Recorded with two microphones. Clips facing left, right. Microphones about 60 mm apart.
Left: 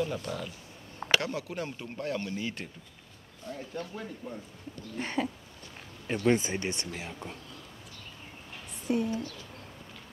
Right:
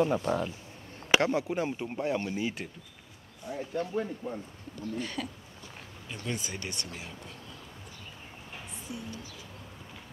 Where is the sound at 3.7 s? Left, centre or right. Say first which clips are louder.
Right 10 dB; right.